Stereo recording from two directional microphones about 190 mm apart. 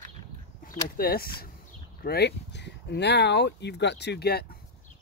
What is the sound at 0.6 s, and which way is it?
Speech, 50° left (ahead or behind).